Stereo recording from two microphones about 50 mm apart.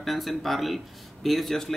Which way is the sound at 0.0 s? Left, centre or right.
Centre.